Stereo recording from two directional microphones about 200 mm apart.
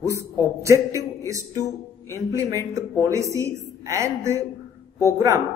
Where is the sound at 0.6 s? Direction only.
15° right (ahead or behind).